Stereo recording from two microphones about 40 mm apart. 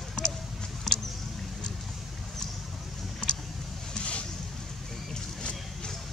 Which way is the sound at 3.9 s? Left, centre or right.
Left.